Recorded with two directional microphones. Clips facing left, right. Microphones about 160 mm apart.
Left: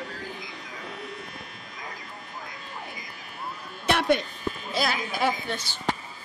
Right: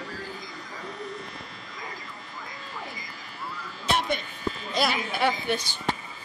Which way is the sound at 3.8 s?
60° left (ahead or behind).